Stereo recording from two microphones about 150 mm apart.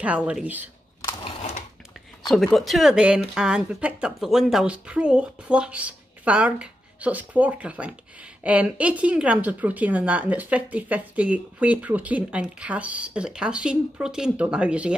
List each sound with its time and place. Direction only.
0.0 s a woman's voice: 10° right (ahead or behind)
1.2 s a sound: 45° left (ahead or behind)
2.2 s a woman's voice: centre (ahead or behind)